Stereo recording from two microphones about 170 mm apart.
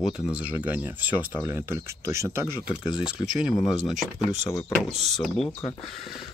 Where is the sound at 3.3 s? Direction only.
Centre (ahead or behind).